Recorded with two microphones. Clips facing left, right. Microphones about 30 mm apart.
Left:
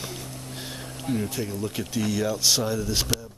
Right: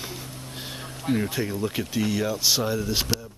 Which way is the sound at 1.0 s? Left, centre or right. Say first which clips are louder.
Right 3 dB; right.